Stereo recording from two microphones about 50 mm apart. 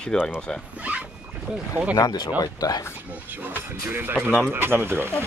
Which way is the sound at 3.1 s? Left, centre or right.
Right.